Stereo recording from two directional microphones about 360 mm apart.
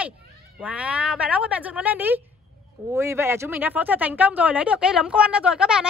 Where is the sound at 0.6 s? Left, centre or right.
Centre.